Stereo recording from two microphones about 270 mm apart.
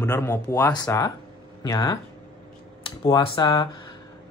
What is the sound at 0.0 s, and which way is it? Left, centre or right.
Speech, centre.